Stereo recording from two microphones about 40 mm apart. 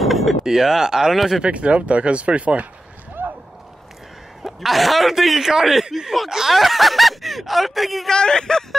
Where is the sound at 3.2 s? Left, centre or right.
Right.